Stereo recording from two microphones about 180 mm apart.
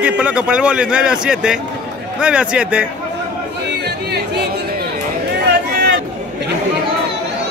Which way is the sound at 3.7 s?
65° right (ahead or behind).